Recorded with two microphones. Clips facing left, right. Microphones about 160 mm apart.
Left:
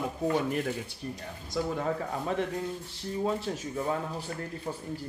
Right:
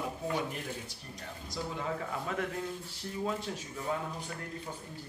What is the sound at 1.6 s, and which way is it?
Speech, 65° left (ahead or behind).